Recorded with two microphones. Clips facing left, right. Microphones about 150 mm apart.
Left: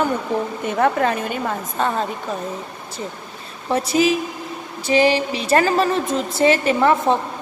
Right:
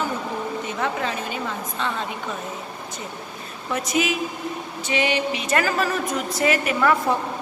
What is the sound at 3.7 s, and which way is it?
A woman's voice, 30° left (ahead or behind).